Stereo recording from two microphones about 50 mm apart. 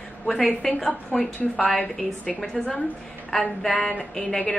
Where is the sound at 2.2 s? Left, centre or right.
Centre.